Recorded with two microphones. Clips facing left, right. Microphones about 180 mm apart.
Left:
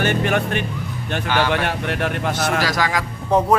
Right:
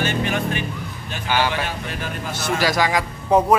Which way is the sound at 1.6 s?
65° left (ahead or behind).